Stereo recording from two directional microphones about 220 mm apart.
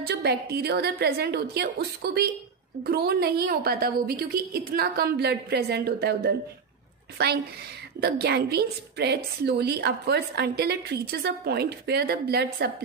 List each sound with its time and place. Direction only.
0.0 s a woman's voice: 50° right (ahead or behind)
8.0 s a woman's voice: 50° right (ahead or behind)